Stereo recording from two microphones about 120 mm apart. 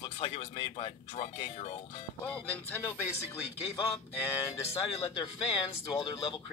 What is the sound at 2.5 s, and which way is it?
Speech, 20° left (ahead or behind).